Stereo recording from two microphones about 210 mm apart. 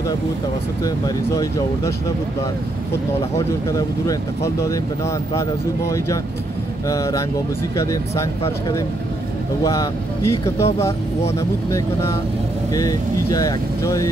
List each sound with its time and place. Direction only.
0.8 s speech: 15° left (ahead or behind)
3.3 s speech: 15° left (ahead or behind)